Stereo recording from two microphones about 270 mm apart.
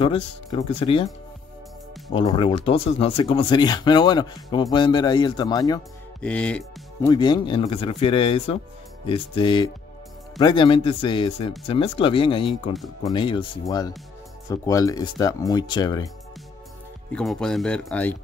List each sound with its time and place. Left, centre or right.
0.0 s speech: centre
2.1 s speech: centre
7.1 s speech: centre
12.7 s speech: centre
13.1 s speech: centre
17.1 s speech: centre